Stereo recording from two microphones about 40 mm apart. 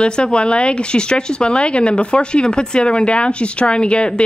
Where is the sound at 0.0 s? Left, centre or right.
Left.